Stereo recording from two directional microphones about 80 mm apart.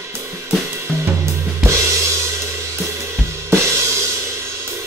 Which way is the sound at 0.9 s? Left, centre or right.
Centre.